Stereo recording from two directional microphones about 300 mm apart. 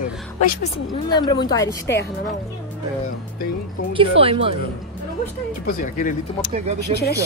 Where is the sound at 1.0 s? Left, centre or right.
Centre.